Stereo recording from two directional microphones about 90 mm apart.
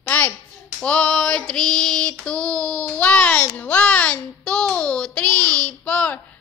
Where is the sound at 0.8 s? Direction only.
10° left (ahead or behind).